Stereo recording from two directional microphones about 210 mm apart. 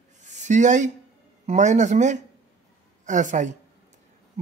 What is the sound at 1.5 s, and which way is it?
Speech, 35° right (ahead or behind).